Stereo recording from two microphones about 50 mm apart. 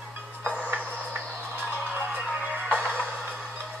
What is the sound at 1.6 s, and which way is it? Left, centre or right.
Music, right.